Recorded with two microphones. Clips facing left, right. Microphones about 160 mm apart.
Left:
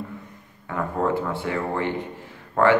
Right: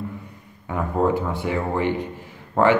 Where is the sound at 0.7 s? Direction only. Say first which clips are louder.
Right 3 dB; 15° right (ahead or behind).